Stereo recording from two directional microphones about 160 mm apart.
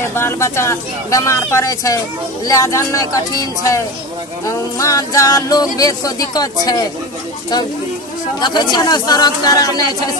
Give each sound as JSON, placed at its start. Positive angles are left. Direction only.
{"t": 0.1, "sound": "speech", "side_deg": 15}
{"t": 2.4, "sound": "music", "side_deg": 20}
{"t": 8.4, "sound": "music", "side_deg": 25}